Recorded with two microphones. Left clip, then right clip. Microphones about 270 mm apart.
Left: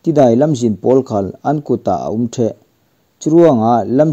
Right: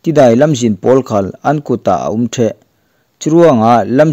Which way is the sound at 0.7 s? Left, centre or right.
Right.